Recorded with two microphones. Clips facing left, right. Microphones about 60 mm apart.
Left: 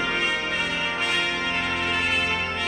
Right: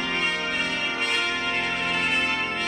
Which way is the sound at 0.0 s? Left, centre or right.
Centre.